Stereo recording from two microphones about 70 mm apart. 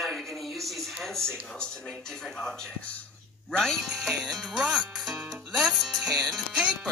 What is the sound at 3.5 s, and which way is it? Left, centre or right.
Music, centre.